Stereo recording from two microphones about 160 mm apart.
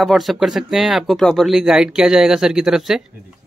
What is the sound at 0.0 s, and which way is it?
Speech, centre (ahead or behind).